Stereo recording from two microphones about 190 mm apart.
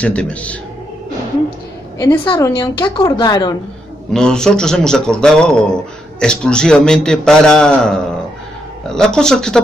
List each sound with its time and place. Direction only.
0.0 s a man's voice: 5° left (ahead or behind)
2.2 s a woman's voice: 20° left (ahead or behind)
4.1 s a man's voice: 5° left (ahead or behind)